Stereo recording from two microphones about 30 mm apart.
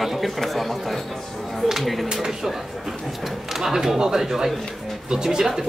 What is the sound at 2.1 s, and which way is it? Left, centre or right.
Speech, centre.